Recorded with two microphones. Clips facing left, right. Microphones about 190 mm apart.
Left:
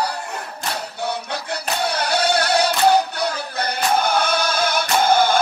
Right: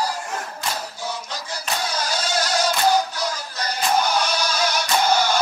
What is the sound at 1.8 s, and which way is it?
Music, 65° left (ahead or behind).